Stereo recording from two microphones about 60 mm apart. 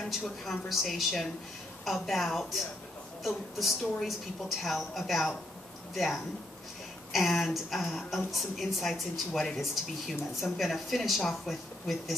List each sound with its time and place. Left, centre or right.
0.2 s speech: centre